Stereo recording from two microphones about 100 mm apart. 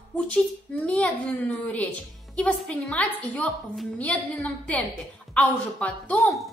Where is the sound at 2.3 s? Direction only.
10° left (ahead or behind).